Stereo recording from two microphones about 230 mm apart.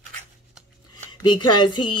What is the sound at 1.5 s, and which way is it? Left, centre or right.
Speech, centre.